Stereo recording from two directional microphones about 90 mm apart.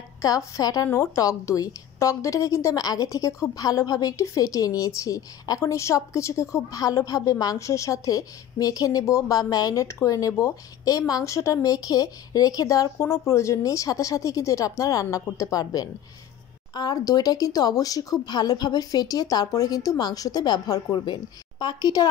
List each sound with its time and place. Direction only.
0.2 s a woman's voice: 40° left (ahead or behind)